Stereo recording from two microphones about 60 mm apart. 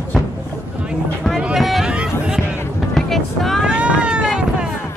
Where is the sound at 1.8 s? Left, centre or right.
Centre.